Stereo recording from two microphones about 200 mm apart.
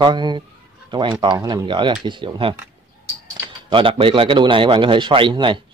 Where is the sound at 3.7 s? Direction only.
25° right (ahead or behind).